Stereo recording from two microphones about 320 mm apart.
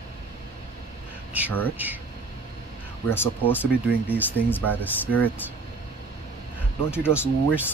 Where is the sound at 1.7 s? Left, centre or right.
Centre.